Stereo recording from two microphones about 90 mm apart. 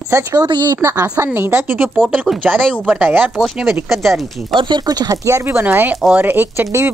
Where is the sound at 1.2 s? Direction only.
25° right (ahead or behind).